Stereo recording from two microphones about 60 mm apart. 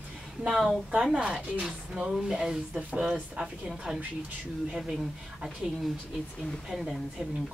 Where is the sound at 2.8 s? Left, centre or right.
Right.